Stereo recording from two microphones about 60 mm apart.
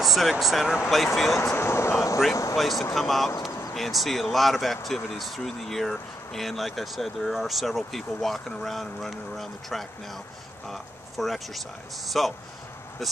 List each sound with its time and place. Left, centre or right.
0.0 s speech: centre
1.4 s speech: left
2.5 s speech: centre